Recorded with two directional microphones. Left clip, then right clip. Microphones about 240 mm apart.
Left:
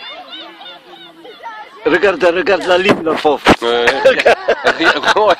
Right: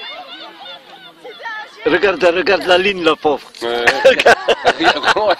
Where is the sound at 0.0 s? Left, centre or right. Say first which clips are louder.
Left 1 dB; left.